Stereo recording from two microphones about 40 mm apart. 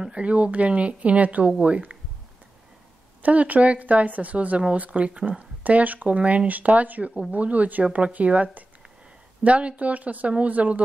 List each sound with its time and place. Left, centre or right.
0.1 s a woman's voice: right
3.2 s a woman's voice: right
5.6 s a woman's voice: right